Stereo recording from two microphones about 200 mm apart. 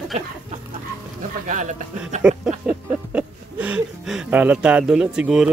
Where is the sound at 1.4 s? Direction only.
40° right (ahead or behind).